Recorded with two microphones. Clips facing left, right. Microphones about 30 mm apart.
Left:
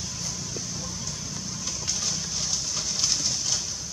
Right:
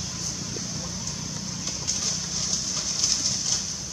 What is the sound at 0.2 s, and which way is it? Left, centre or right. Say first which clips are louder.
Vehicle: right 1 dB; centre.